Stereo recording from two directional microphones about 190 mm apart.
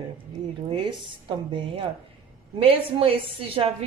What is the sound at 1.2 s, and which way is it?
A woman's voice, 25° right (ahead or behind).